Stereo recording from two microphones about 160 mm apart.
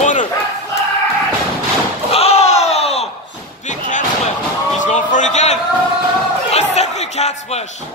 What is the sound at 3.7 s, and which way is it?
Slam, 50° left (ahead or behind).